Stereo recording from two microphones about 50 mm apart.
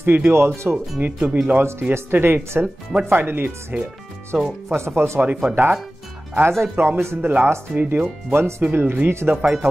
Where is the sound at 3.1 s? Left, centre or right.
Right.